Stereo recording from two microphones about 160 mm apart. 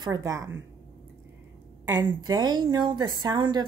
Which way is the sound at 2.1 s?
25° right (ahead or behind).